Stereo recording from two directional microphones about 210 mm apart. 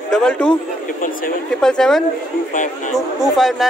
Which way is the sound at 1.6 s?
5° left (ahead or behind).